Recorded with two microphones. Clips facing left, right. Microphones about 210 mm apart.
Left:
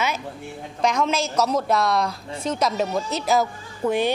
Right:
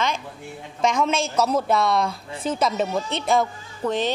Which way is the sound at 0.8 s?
Centre (ahead or behind).